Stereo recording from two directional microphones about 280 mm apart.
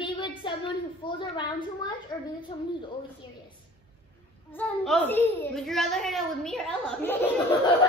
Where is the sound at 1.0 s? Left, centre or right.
Centre.